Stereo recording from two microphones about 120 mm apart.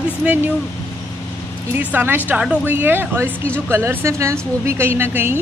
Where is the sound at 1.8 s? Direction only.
15° right (ahead or behind).